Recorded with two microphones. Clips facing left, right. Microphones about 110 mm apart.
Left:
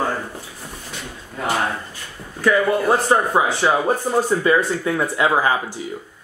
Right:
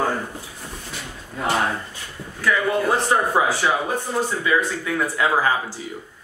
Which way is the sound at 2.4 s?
25° left (ahead or behind).